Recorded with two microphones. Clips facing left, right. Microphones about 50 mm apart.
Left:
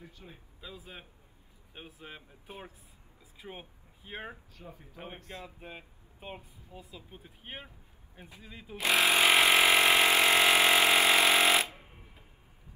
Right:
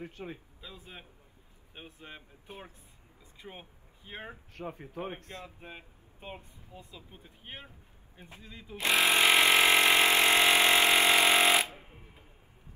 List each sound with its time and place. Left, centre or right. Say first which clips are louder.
0.0 s speech: right 9 dB; right
0.6 s speech: left 1 dB; centre
4.6 s speech: right 9 dB; right
4.9 s a man's voice: right 1 dB; right
5.6 s speech: left 1 dB; centre
8.8 s vehicle: even; centre
11.8 s a sound: right 1 dB; centre